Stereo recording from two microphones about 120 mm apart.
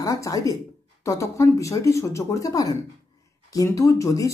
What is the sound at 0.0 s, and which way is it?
Speech, 25° left (ahead or behind).